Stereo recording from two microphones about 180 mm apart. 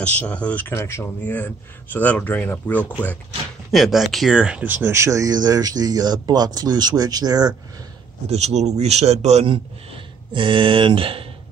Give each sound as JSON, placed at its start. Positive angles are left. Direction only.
{"t": 0.0, "sound": "a man's voice", "side_deg": 5}
{"t": 3.7, "sound": "speech", "side_deg": 0}
{"t": 8.3, "sound": "a man's voice", "side_deg": -35}